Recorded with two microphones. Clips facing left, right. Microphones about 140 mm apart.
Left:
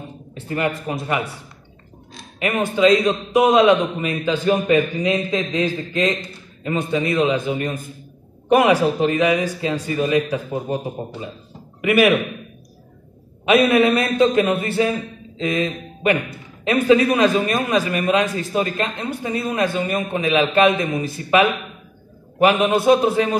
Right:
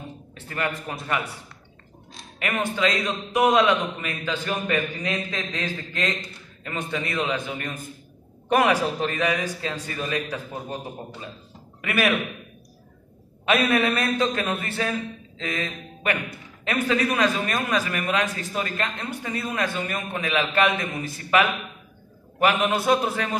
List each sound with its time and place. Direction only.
0.3 s speech: 20° left (ahead or behind)
2.3 s a man's voice: 20° left (ahead or behind)
13.5 s a man's voice: 15° left (ahead or behind)